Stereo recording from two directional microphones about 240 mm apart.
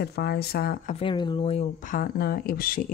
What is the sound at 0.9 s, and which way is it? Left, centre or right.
A woman's voice, centre.